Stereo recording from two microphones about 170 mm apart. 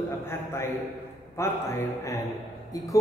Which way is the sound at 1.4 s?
15° left (ahead or behind).